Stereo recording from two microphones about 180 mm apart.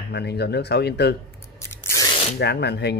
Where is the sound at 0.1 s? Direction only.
65° left (ahead or behind).